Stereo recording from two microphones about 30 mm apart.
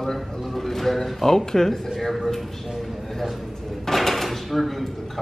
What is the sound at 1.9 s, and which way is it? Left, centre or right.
Speech, centre.